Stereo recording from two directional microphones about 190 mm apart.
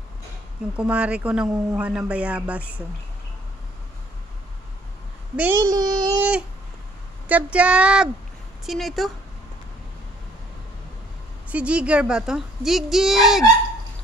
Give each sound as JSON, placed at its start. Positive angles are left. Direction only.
{"t": 0.7, "sound": "a woman's voice", "side_deg": -5}
{"t": 5.3, "sound": "a child's voice", "side_deg": -10}
{"t": 5.6, "sound": "speech", "side_deg": -20}
{"t": 7.2, "sound": "a woman's voice", "side_deg": -5}
{"t": 11.4, "sound": "a woman's voice", "side_deg": -5}